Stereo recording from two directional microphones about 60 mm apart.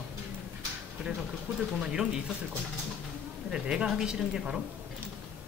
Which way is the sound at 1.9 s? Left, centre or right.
Centre.